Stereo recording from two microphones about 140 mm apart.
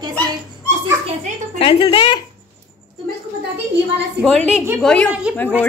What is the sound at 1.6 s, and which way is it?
Speech, 40° left (ahead or behind).